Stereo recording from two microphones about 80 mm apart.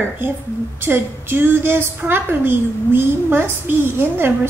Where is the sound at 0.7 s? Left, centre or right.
Right.